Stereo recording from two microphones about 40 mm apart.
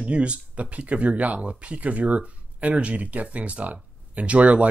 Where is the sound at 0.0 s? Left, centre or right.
Right.